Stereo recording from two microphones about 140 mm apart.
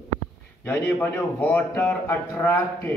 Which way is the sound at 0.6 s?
15° left (ahead or behind).